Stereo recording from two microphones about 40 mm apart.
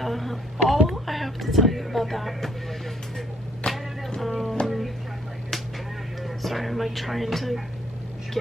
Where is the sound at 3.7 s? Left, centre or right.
Left.